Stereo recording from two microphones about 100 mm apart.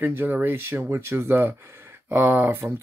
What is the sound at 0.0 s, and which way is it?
Speech, 20° right (ahead or behind).